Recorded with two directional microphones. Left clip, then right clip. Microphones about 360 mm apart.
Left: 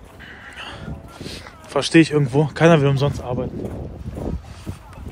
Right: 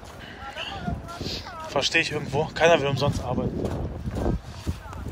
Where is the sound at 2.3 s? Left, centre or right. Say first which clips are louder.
Left 2 dB; left.